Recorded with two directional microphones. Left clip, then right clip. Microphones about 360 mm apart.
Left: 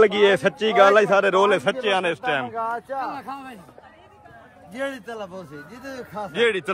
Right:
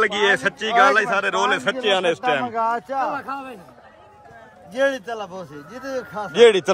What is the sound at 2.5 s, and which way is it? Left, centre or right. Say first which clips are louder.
Speech: right 5 dB; right.